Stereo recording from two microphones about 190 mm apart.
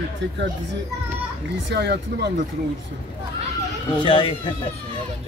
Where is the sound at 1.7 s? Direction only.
60° right (ahead or behind).